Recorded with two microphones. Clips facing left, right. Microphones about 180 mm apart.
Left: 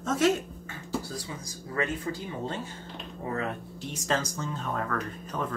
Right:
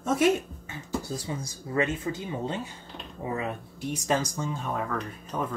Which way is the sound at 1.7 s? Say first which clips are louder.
Right 3 dB; 20° right (ahead or behind).